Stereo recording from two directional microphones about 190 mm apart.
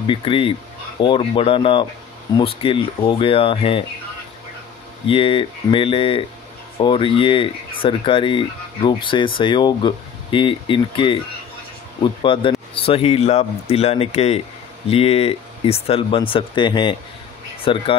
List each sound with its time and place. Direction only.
0.0 s speech: 25° left (ahead or behind)
5.0 s speech: 30° left (ahead or behind)